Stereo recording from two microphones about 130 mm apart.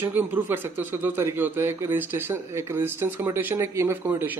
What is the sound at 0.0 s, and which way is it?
Speech, 15° right (ahead or behind).